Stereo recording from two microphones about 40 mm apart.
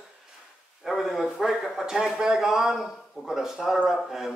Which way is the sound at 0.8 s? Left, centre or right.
Centre.